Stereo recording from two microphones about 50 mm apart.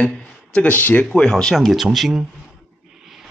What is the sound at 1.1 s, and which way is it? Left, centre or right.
Speech, centre.